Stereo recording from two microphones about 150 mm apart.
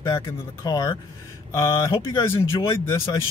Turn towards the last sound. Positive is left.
turn(degrees=20)  # may be behind; listen again after turning